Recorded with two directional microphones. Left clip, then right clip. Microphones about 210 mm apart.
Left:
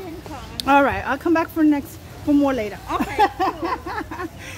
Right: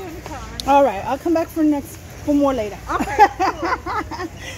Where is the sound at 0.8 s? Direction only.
10° left (ahead or behind).